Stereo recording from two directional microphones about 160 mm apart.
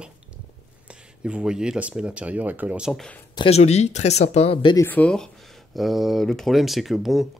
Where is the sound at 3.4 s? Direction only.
40° left (ahead or behind).